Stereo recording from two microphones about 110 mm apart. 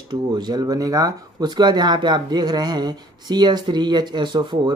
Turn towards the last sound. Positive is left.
turn(degrees=-45)  # may be behind; listen again after turning